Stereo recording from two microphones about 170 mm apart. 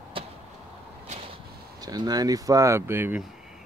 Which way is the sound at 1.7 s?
25° right (ahead or behind).